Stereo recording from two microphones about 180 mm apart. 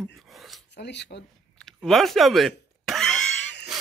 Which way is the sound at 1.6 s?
5° left (ahead or behind).